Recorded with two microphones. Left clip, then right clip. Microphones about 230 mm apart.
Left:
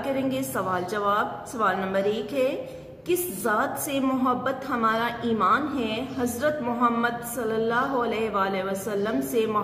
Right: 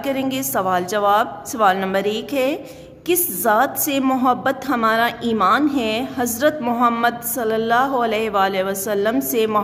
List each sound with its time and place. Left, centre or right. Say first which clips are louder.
0.0 s a woman's voice: right 5 dB; right